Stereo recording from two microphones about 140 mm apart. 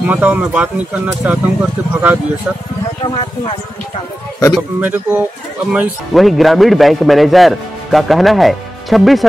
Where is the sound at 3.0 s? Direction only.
35° left (ahead or behind).